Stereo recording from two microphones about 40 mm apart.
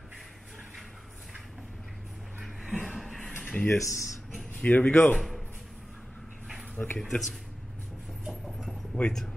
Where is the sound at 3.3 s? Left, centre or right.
Left.